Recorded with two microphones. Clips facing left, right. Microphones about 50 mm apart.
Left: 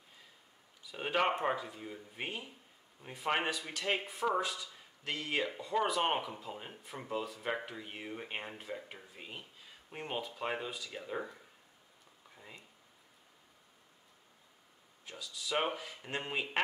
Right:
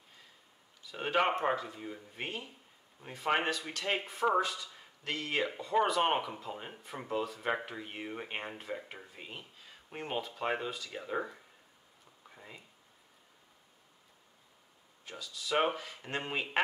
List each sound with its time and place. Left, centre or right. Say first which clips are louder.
0.9 s speech: right 2 dB; centre
1.8 s speech: right 2 dB; centre
2.1 s speech: even; centre
5.7 s speech: right 3 dB; centre
9.1 s speech: right 1 dB; centre
15.0 s speech: right 3 dB; centre